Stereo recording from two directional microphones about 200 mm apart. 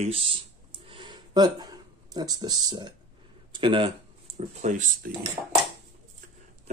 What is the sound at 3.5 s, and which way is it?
Speech, 25° right (ahead or behind).